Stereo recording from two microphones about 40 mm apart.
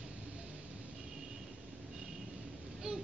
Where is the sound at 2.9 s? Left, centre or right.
Right.